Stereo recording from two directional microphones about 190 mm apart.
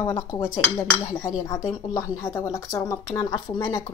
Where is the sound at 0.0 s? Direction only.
20° left (ahead or behind).